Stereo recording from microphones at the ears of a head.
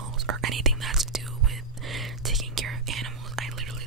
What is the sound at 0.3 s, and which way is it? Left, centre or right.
Whispering, right.